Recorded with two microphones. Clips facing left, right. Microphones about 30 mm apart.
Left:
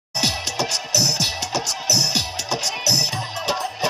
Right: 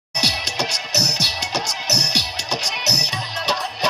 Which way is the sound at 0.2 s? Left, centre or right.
Right.